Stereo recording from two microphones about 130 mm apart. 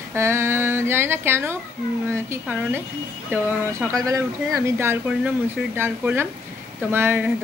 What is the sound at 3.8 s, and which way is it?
A woman's voice, 25° right (ahead or behind).